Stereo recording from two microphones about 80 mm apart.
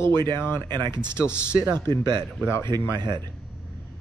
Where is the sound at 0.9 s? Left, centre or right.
Left.